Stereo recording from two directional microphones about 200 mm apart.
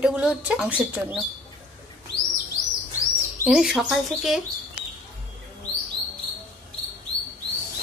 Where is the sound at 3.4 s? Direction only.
Centre (ahead or behind).